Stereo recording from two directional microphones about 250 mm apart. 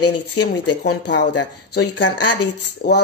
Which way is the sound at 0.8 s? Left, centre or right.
Left.